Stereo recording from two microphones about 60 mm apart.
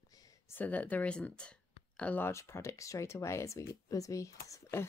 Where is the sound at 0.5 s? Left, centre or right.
Left.